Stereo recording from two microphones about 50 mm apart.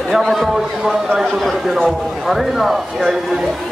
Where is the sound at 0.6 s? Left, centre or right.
Centre.